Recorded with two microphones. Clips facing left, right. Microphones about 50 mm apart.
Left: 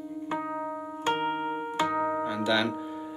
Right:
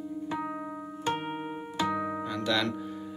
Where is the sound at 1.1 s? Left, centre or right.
Left.